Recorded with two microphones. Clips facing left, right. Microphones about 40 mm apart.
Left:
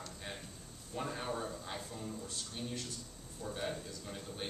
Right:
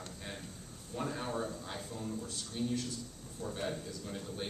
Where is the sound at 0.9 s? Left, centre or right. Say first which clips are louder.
Right 2 dB; centre.